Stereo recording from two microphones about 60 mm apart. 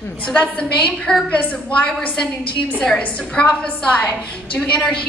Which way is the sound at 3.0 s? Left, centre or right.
Left.